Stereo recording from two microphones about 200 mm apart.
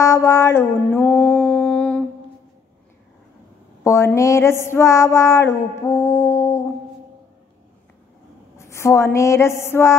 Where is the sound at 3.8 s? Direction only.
15° left (ahead or behind).